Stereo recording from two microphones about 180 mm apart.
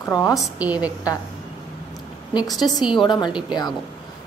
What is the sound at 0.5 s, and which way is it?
Speech, 10° right (ahead or behind).